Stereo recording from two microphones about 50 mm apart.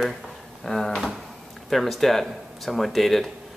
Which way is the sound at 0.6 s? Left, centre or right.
Centre.